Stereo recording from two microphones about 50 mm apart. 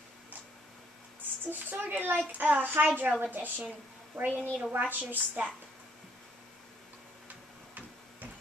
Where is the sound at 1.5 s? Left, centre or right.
Right.